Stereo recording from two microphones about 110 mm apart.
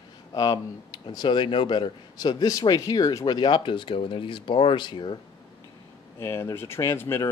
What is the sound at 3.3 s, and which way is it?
Speech, 45° left (ahead or behind).